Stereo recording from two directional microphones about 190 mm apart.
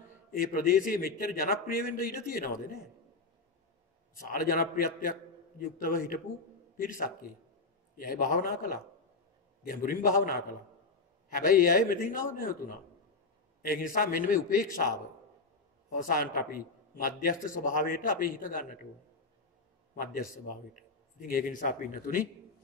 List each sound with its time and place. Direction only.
0.3 s a man's voice: 50° left (ahead or behind)
4.1 s a man's voice: 50° left (ahead or behind)
11.3 s a man's voice: 50° left (ahead or behind)
16.1 s a man's voice: 45° left (ahead or behind)
21.2 s a man's voice: 50° left (ahead or behind)